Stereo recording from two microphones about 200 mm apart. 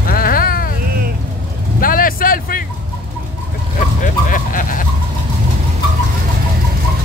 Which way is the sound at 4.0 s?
40° left (ahead or behind).